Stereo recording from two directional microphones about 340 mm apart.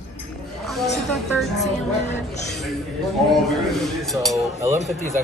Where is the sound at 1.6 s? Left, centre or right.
Centre.